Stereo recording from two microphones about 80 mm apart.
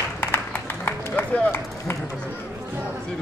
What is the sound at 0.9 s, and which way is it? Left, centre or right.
Run, left.